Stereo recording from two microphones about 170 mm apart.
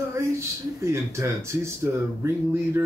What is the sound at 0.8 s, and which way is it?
Speech, 15° right (ahead or behind).